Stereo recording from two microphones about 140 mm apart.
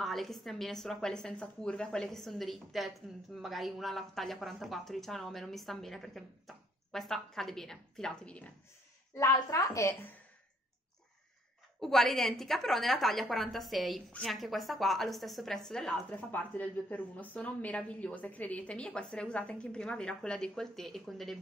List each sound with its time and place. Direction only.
0.0 s speech: centre (ahead or behind)
9.2 s a woman's voice: 25° left (ahead or behind)
11.8 s a woman's voice: centre (ahead or behind)